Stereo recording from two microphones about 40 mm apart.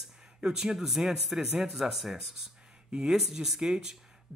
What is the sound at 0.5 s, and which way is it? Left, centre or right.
Speech, centre.